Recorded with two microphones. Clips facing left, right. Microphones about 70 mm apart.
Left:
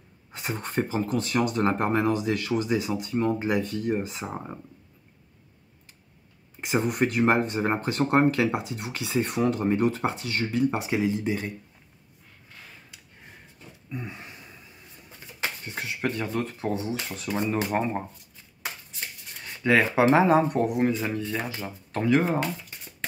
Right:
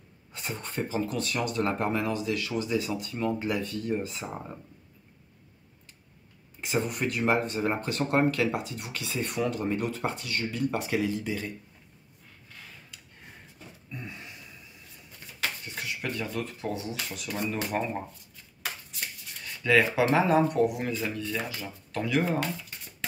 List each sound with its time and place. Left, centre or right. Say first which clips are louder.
0.4 s speech: left 5 dB; left
2.7 s speech: left 4 dB; left
6.7 s speech: left 4 dB; left
8.5 s speech: left 3 dB; centre
9.2 s speech: left 4 dB; left; by 11.3 s centre
13.9 s a sound: left 4 dB; left
15.0 s speech: left 1 dB; left
19.4 s speech: left 1 dB; left